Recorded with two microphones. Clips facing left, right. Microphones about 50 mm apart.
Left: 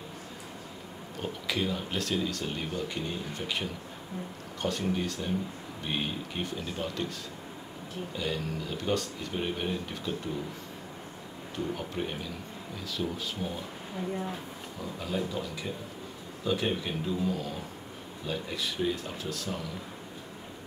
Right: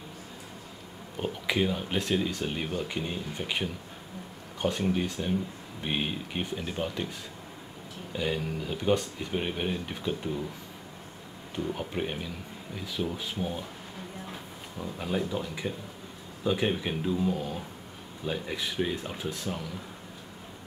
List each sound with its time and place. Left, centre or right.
1.2 s speech: centre
8.2 s speech: centre
11.5 s speech: centre
14.8 s speech: right